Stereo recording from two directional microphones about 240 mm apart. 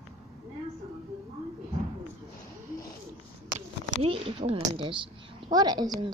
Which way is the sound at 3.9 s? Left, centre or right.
Right.